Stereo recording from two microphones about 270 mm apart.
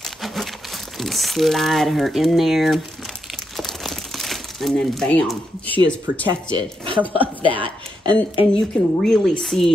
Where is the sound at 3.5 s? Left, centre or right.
Centre.